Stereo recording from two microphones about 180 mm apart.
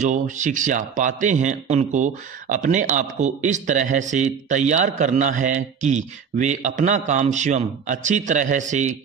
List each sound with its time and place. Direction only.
0.0 s speech: 45° right (ahead or behind)